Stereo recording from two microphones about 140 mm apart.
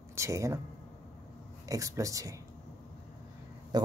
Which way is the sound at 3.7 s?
30° right (ahead or behind).